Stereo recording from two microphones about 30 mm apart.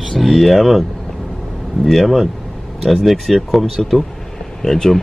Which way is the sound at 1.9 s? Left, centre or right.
Centre.